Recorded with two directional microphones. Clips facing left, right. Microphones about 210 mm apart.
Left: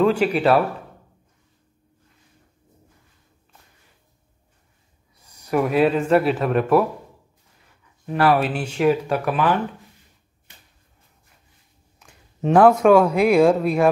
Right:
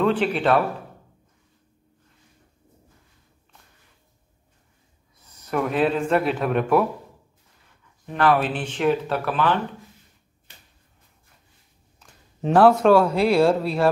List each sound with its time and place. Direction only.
0.0 s speech: 10° left (ahead or behind)
5.3 s speech: 10° left (ahead or behind)
8.1 s speech: 5° left (ahead or behind)
12.0 s a sound: 5° left (ahead or behind)
12.8 s speech: 10° left (ahead or behind)